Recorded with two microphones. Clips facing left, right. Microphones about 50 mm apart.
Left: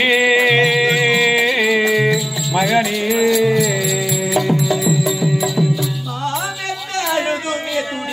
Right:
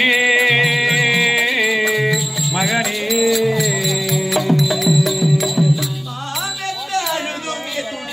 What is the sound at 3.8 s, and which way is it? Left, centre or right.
Music, left.